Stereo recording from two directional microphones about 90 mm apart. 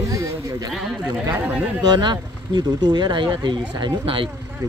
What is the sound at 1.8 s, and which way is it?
Speech, 55° right (ahead or behind).